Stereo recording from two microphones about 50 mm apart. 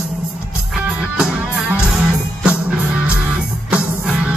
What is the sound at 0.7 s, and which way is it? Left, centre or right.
Music, centre.